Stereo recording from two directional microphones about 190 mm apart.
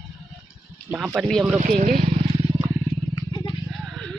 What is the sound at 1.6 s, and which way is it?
Speech, 40° right (ahead or behind).